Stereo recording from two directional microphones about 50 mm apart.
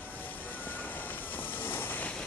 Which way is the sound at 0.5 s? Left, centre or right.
Left.